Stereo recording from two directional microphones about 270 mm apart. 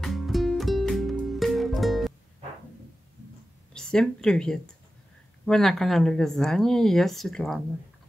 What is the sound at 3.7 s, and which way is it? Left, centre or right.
Speech, centre.